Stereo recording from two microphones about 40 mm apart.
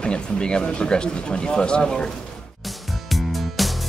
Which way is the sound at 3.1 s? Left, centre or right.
Centre.